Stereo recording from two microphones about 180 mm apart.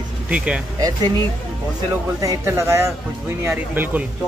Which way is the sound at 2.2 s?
15° right (ahead or behind).